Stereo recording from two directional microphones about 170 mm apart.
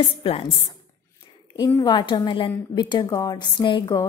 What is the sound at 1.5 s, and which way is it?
A woman's voice, 20° left (ahead or behind).